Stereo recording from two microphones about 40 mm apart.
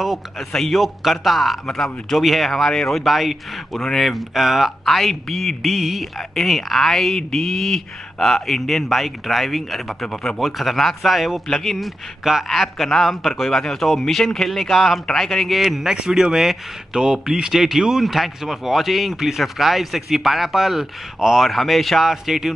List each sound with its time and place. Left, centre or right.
0.5 s speech: centre
0.7 s speech: centre
5.6 s speech: centre
11.4 s speech: centre
15.6 s speech: centre
15.9 s speech: centre
21.5 s speech: centre